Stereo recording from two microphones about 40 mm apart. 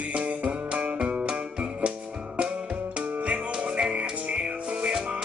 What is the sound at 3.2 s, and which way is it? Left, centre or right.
Music, right.